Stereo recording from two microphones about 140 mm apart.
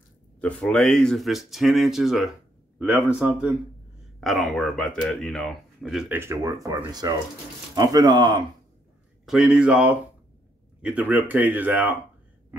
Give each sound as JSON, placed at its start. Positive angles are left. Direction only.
{"t": 0.4, "sound": "speech", "side_deg": 10}
{"t": 6.0, "sound": "speech", "side_deg": -15}
{"t": 9.2, "sound": "speech", "side_deg": -5}